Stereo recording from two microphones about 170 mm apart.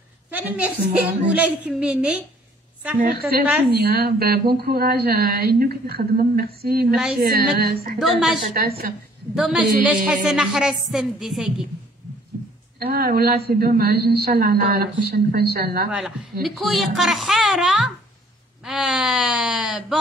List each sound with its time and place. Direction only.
0.3 s a woman's voice: 10° right (ahead or behind)
3.0 s a woman's voice: 60° right (ahead or behind)
8.0 s a woman's voice: centre (ahead or behind)
8.5 s a woman's voice: 65° right (ahead or behind)
9.3 s a woman's voice: 5° right (ahead or behind)
12.7 s a woman's voice: 65° right (ahead or behind)
16.4 s a woman's voice: centre (ahead or behind)